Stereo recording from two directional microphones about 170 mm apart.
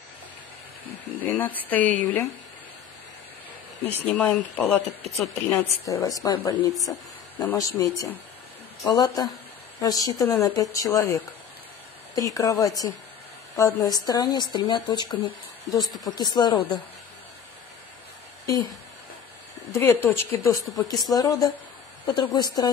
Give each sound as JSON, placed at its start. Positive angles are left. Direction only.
{"t": 1.2, "sound": "speech", "side_deg": 10}
{"t": 3.8, "sound": "speech", "side_deg": 10}
{"t": 5.6, "sound": "speech", "side_deg": 20}
{"t": 15.8, "sound": "a woman's voice", "side_deg": 0}
{"t": 16.1, "sound": "speech", "side_deg": 25}
{"t": 18.4, "sound": "speech", "side_deg": 20}
{"t": 19.7, "sound": "speech", "side_deg": 10}
{"t": 20.7, "sound": "speech", "side_deg": 20}